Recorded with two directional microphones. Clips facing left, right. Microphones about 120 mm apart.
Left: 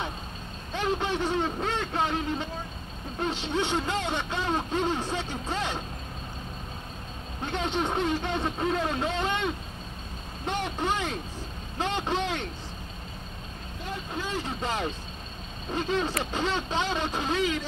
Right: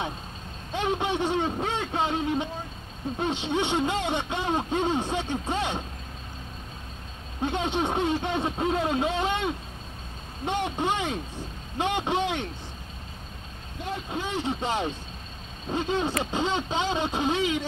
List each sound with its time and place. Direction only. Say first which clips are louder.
0.7 s vehicle: right 1 dB; 20° right (ahead or behind)
3.2 s speech: right 1 dB; 20° right (ahead or behind)
7.4 s speech: right 2 dB; 15° right (ahead or behind)
14.1 s speech: right 3 dB; 20° right (ahead or behind)